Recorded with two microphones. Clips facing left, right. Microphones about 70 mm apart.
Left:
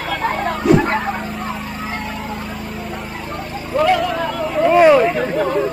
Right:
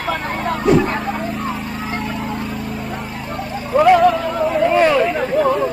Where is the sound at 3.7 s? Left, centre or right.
Centre.